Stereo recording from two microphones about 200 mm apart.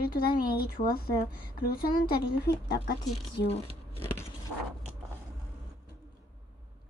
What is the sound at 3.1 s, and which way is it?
Speech, 30° left (ahead or behind).